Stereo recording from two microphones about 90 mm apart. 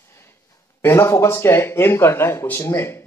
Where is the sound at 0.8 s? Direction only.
30° left (ahead or behind).